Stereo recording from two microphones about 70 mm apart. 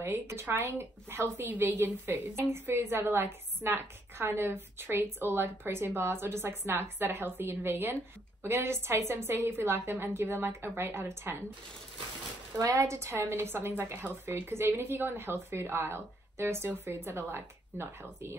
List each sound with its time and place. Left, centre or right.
0.0 s a woman's voice: right
12.5 s a woman's voice: right